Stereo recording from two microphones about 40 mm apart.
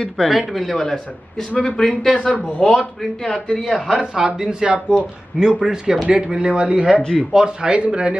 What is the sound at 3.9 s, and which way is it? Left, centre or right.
A man's voice, centre.